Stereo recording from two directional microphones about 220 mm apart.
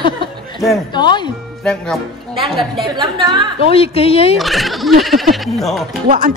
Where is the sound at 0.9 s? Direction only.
20° left (ahead or behind).